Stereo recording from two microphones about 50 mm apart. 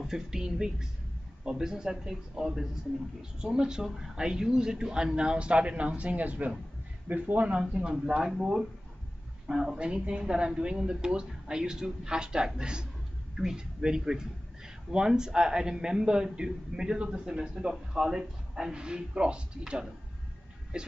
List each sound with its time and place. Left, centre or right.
0.0 s speech: centre; by 7.5 s right
7.5 s speech: centre